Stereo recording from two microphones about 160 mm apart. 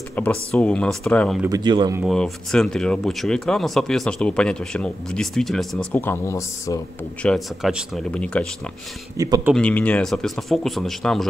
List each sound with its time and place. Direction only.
0.1 s speech: 10° left (ahead or behind)
1.5 s speech: 25° right (ahead or behind)
2.0 s speech: 5° left (ahead or behind)
5.9 s speech: 15° left (ahead or behind)
7.2 s speech: centre (ahead or behind)
9.1 s speech: 20° right (ahead or behind)
9.5 s speech: 5° left (ahead or behind)